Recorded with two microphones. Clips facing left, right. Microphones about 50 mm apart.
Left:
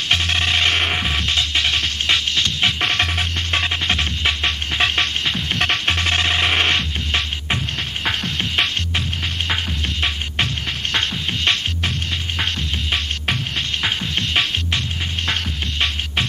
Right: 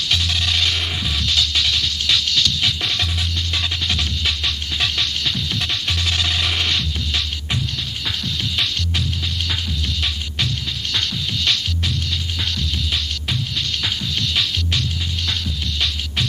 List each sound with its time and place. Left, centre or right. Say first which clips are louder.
0.1 s music: left 4 dB; left
10.0 s music: left 5 dB; left
13.8 s music: left 2 dB; left